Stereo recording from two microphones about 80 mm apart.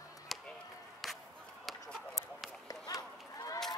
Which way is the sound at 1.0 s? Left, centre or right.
Centre.